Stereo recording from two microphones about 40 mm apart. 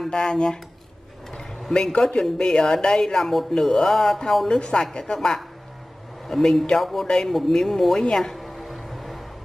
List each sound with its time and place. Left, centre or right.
0.1 s speech: centre
1.3 s a sound: centre
2.2 s speech: centre
3.2 s speech: centre
4.5 s speech: centre
8.4 s music: centre